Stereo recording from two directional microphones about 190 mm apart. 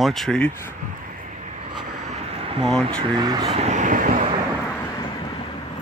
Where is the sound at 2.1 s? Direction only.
30° right (ahead or behind).